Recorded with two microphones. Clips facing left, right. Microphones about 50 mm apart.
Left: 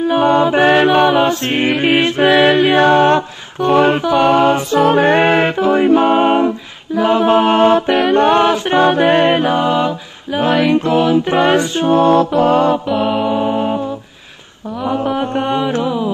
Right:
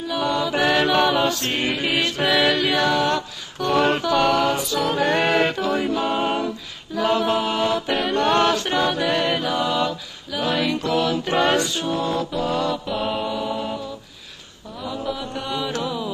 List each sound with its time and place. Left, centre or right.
0.0 s mantra: left
7.0 s music: left
7.3 s mantra: left
8.1 s music: left
11.9 s mantra: left
12.9 s music: centre
13.3 s music: left
14.8 s music: left